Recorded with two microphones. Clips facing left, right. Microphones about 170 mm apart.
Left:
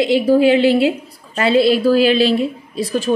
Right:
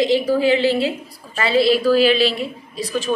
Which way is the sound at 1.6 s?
50° left (ahead or behind).